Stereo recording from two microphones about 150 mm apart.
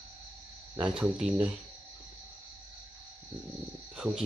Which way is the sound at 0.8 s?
5° right (ahead or behind).